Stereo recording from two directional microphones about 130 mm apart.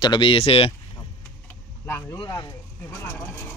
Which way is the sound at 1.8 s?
20° left (ahead or behind).